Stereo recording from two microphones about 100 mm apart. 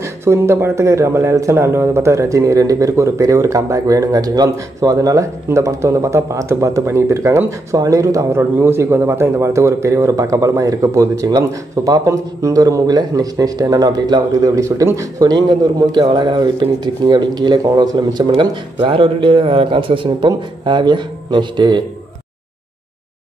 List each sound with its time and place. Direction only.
0.0 s a man's voice: 25° right (ahead or behind); by 21.8 s 50° right (ahead or behind)